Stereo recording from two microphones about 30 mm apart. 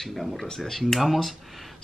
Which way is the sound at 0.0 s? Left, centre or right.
Centre.